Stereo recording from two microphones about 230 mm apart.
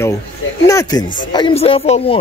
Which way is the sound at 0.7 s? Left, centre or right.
Centre.